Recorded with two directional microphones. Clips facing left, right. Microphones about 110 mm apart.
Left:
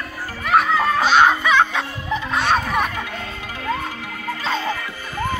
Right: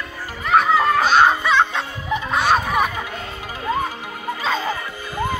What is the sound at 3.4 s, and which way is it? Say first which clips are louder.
Music: right 3 dB; 20° right (ahead or behind).